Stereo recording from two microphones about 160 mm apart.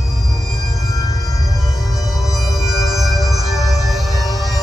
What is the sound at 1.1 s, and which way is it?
Music, 20° left (ahead or behind).